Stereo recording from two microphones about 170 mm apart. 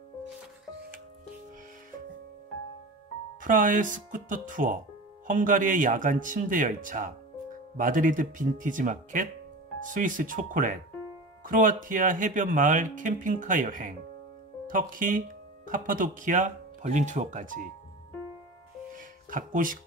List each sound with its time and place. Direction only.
3.4 s speech: 50° right (ahead or behind)
18.9 s music: 50° right (ahead or behind)